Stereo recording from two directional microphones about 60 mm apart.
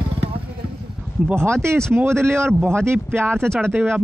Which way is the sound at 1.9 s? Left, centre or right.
Right.